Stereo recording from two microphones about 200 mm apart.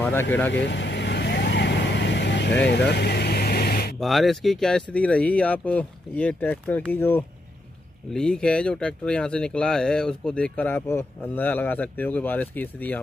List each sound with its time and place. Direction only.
0.0 s speech: 10° left (ahead or behind)
0.5 s vehicle: 65° left (ahead or behind)
4.0 s speech: centre (ahead or behind)